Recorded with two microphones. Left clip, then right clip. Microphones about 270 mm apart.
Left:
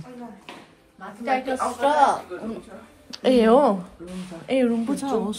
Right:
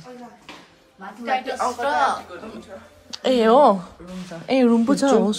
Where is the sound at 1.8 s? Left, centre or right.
Left.